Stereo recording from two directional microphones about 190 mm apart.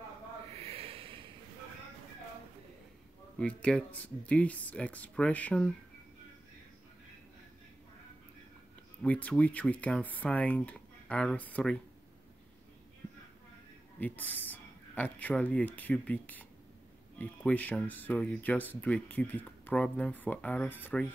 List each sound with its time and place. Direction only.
0.5 s snort: 30° right (ahead or behind)
3.3 s speech: 5° left (ahead or behind)
9.0 s speech: 5° left (ahead or behind)
13.9 s speech: 10° left (ahead or behind)